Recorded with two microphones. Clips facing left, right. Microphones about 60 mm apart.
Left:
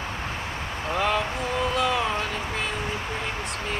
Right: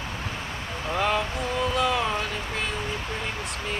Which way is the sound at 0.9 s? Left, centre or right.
Centre.